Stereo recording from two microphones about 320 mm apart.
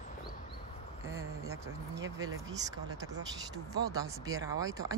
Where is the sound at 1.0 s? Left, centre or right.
Centre.